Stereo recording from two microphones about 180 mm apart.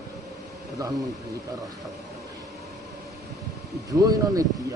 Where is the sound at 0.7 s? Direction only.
20° right (ahead or behind).